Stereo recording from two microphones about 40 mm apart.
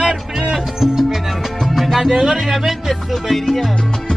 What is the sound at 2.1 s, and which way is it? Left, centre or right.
Music, centre.